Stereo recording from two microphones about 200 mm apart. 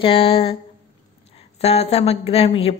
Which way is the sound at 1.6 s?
30° left (ahead or behind).